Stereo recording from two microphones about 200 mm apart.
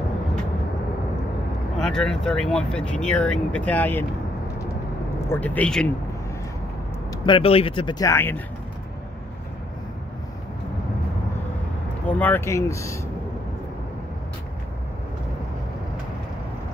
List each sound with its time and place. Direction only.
1.8 s speech: 5° left (ahead or behind)
5.3 s speech: 10° left (ahead or behind)
7.2 s speech: 25° left (ahead or behind)
12.1 s speech: 10° left (ahead or behind)